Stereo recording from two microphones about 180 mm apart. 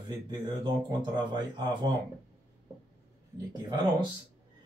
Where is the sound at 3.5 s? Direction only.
25° right (ahead or behind).